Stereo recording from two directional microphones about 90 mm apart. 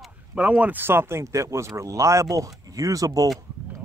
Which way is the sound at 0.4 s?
15° right (ahead or behind).